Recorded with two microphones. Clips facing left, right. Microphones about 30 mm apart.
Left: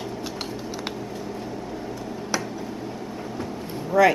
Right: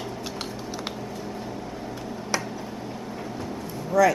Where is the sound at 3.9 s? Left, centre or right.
Left.